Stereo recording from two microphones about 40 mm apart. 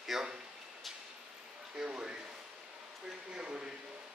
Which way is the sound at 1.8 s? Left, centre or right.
Right.